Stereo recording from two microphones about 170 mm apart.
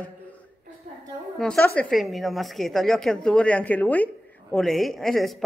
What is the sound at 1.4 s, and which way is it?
A woman's voice, 5° left (ahead or behind).